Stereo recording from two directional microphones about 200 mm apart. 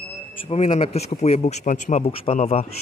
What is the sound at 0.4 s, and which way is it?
Speech, 30° left (ahead or behind).